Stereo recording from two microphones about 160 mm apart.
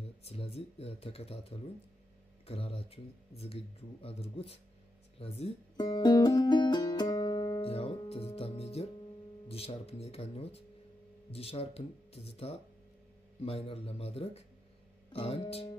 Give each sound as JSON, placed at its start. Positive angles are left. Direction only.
{"t": 0.2, "sound": "speech", "side_deg": 40}
{"t": 5.8, "sound": "music", "side_deg": 25}
{"t": 7.6, "sound": "speech", "side_deg": 35}